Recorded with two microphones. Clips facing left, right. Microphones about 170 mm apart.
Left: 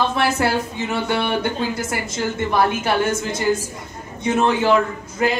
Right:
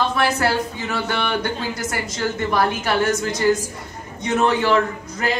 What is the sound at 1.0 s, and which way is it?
Speech, 25° left (ahead or behind).